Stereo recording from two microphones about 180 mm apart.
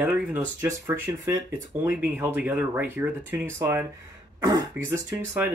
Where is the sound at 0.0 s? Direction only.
10° right (ahead or behind).